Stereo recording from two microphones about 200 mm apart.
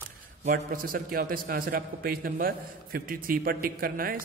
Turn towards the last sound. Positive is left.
turn(degrees=-45)  # may be behind; listen again after turning